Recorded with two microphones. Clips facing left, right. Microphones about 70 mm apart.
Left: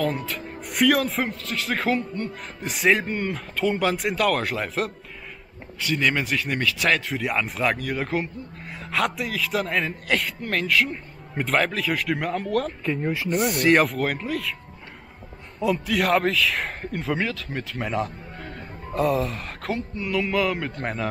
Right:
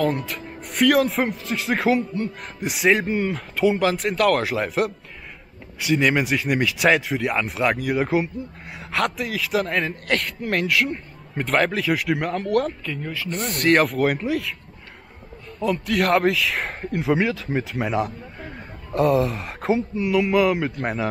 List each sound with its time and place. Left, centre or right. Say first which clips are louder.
0.0 s speech: right 3 dB; centre
1.3 s speech: right 3 dB; centre
7.1 s speech: right 2 dB; centre
12.8 s speech: left 4 dB; left
13.3 s speech: even; centre
15.6 s a man's voice: right 1 dB; centre